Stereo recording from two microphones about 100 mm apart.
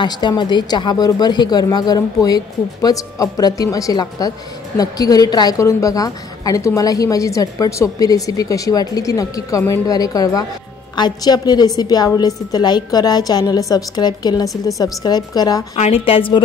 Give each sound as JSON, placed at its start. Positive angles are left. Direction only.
{"t": 0.0, "sound": "a woman's voice", "side_deg": 45}
{"t": 15.7, "sound": "a woman's voice", "side_deg": 75}